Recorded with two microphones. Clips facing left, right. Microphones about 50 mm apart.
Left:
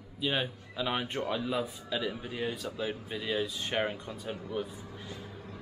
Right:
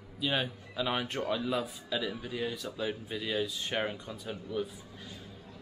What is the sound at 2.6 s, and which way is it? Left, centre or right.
Speech, centre.